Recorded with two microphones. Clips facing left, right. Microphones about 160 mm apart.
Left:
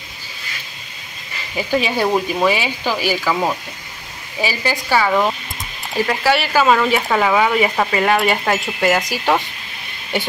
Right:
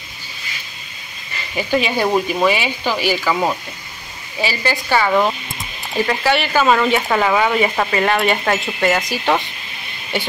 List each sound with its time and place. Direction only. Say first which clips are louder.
1.9 s a woman's voice: even; 5° left (ahead or behind)